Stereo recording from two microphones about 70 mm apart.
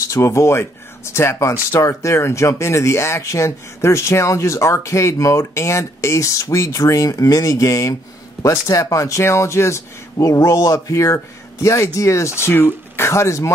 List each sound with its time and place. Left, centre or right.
0.1 s speech: left
10.1 s speech: left